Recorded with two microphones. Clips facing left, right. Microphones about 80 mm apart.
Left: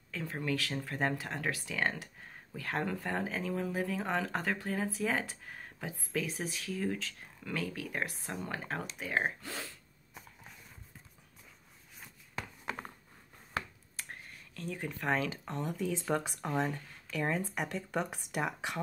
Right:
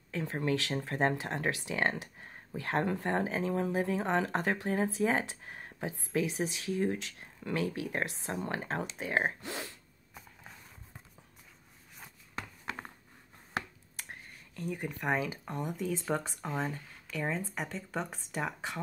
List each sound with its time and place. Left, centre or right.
0.1 s speech: right
14.5 s speech: centre
16.1 s speech: centre